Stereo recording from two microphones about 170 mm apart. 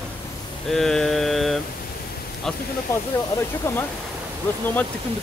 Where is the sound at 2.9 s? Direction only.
15° left (ahead or behind).